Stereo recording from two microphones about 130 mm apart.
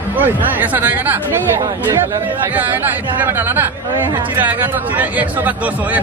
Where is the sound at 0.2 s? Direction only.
15° right (ahead or behind).